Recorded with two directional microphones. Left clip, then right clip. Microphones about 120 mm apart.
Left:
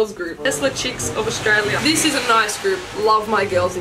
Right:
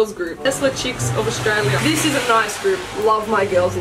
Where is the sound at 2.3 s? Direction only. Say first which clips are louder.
Even; 20° left (ahead or behind).